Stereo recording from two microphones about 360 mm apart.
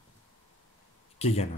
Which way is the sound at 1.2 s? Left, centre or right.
Centre.